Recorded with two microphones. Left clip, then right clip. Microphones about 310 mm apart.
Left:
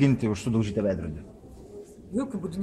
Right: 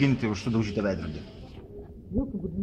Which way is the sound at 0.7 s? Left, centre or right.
Centre.